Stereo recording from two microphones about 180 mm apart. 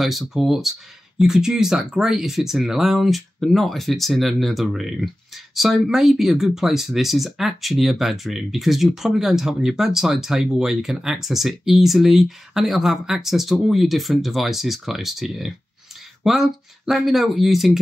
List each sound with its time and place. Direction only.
0.0 s speech: centre (ahead or behind)